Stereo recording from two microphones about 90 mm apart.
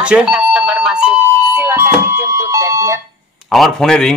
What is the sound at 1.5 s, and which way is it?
Alarm, 25° right (ahead or behind).